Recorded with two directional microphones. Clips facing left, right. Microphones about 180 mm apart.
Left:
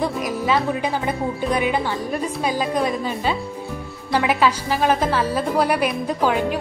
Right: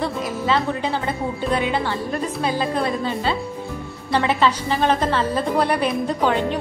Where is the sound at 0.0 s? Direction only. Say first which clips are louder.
Left 1 dB; 15° left (ahead or behind).